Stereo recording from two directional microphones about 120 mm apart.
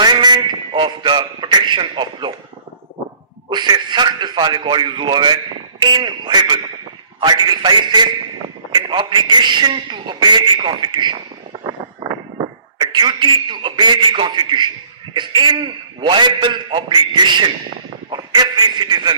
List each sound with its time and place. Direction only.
0.0 s a man's voice: 35° right (ahead or behind)
3.4 s a man's voice: 35° right (ahead or behind)